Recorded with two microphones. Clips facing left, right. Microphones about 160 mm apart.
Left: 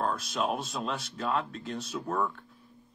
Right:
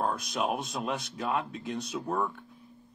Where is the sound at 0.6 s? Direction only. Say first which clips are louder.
Right 1 dB; 15° right (ahead or behind).